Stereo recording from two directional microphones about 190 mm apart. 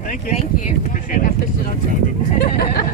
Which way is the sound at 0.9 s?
45° left (ahead or behind).